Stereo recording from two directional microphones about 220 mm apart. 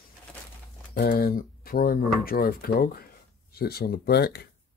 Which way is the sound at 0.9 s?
40° left (ahead or behind).